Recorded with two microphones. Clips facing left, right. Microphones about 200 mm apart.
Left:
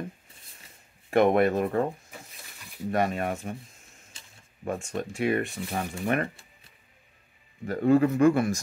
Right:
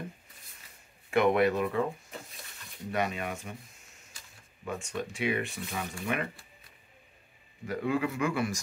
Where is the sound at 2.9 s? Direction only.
45° left (ahead or behind).